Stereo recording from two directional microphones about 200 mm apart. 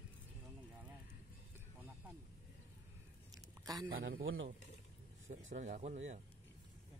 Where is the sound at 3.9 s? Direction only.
80° right.